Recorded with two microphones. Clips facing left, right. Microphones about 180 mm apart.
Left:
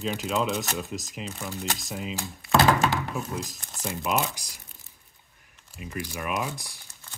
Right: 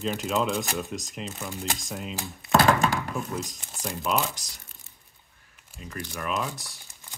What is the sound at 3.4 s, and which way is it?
Speech, centre (ahead or behind).